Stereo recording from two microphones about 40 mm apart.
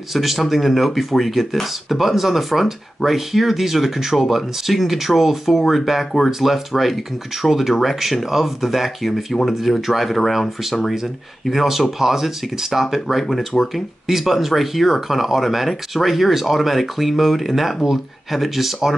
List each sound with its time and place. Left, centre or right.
0.1 s speech: centre
13.5 s speech: left
14.0 s speech: centre